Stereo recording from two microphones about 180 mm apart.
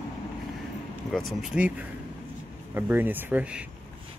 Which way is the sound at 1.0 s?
Centre (ahead or behind).